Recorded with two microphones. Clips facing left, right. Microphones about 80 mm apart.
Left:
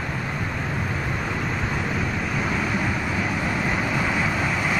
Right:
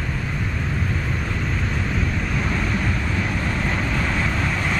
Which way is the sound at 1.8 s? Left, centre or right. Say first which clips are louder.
Even; centre.